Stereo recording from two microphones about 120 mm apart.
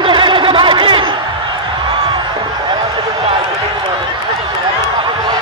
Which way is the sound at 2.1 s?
45° right (ahead or behind).